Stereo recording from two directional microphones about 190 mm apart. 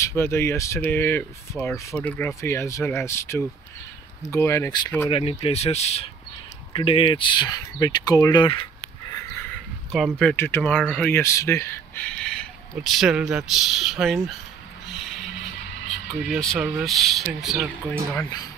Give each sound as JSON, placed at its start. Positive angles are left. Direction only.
{"t": 0.0, "sound": "speech", "side_deg": 15}
{"t": 5.1, "sound": "speech", "side_deg": 30}
{"t": 10.1, "sound": "speech", "side_deg": 10}
{"t": 15.9, "sound": "speech", "side_deg": 0}